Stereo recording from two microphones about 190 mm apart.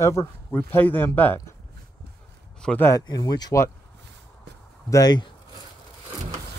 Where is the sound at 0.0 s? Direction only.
15° left (ahead or behind).